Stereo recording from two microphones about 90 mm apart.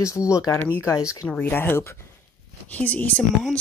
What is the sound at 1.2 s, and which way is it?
Speech, 20° left (ahead or behind).